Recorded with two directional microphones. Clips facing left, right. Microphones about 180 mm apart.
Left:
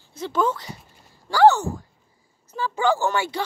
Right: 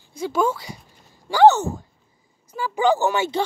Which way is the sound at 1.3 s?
20° right (ahead or behind).